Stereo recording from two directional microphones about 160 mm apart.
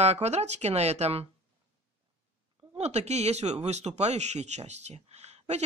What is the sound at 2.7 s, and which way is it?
Speech, 40° right (ahead or behind).